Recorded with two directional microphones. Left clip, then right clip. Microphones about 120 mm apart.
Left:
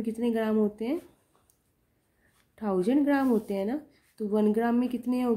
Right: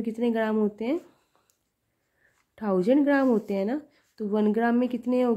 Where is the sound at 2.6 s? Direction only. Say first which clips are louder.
Right 4 dB; 40° right (ahead or behind).